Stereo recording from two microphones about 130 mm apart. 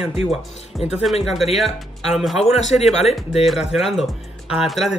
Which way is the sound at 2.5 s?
60° left (ahead or behind).